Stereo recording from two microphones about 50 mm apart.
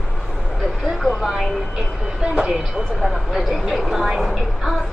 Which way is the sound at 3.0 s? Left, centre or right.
Centre.